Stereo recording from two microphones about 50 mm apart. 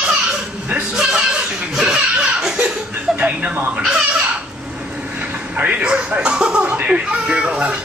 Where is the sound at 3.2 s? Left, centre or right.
Right.